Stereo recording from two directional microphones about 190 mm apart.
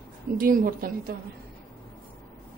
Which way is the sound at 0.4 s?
50° right (ahead or behind).